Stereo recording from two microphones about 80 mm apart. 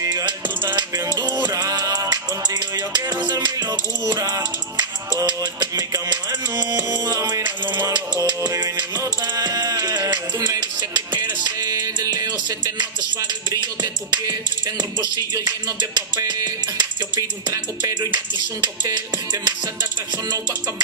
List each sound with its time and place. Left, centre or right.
1.0 s music: right
1.4 s music: right
8.5 s music: right
10.8 s music: right
14.8 s music: right